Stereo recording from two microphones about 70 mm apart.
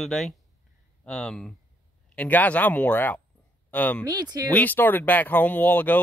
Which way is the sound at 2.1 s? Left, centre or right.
Left.